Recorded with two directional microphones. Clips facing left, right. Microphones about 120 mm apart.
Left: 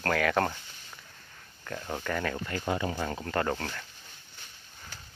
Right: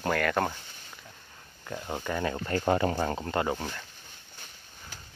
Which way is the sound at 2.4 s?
45° right (ahead or behind).